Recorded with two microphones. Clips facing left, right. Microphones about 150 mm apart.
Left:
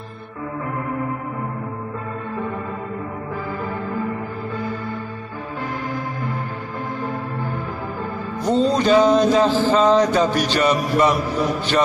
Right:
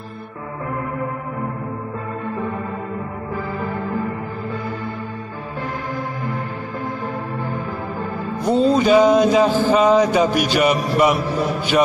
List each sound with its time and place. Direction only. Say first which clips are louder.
8.5 s music: right 2 dB; 5° right (ahead or behind)